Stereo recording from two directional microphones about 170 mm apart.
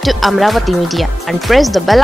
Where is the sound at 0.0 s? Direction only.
Centre (ahead or behind).